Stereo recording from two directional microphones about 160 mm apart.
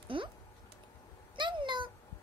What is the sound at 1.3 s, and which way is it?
Cat, 30° right (ahead or behind).